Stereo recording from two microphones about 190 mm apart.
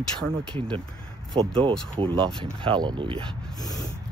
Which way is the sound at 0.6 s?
25° right (ahead or behind).